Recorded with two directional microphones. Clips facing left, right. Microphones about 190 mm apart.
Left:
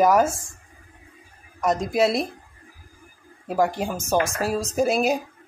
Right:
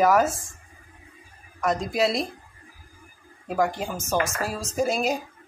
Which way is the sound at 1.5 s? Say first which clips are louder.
Left 3 dB; centre (ahead or behind).